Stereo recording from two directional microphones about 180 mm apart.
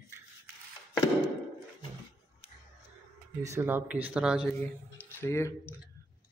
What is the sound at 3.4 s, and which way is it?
Mantra, 15° right (ahead or behind).